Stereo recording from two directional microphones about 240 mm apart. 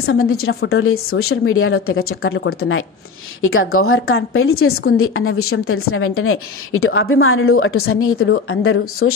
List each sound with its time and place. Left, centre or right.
0.0 s a woman's voice: left